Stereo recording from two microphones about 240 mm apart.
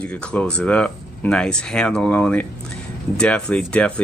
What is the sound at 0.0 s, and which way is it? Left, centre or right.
Speech, centre.